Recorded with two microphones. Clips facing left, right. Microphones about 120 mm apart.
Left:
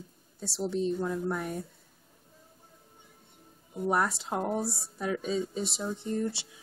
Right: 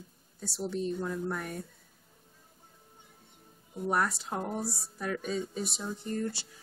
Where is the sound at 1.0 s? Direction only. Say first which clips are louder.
Left 3 dB; 5° left (ahead or behind).